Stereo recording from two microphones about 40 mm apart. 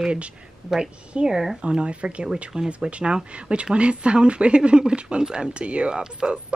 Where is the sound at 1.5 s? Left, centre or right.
Right.